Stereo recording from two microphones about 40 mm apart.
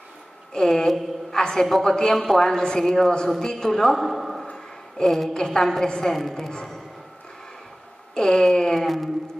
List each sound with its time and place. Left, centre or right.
0.5 s a man's voice: centre
4.9 s a woman's voice: centre
8.1 s speech: centre
8.8 s speech: centre